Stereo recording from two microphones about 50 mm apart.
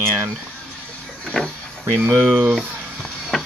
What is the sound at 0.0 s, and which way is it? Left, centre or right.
Speech, right.